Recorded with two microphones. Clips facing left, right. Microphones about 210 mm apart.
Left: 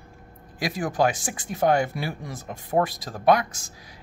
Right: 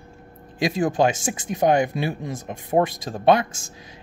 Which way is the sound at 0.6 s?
25° right (ahead or behind).